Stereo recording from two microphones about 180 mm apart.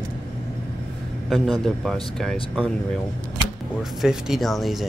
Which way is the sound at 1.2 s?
Centre (ahead or behind).